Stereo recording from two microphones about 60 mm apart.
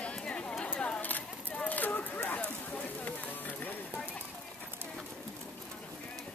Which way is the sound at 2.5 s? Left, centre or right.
Left.